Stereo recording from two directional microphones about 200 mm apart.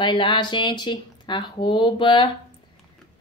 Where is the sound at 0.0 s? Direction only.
25° left (ahead or behind).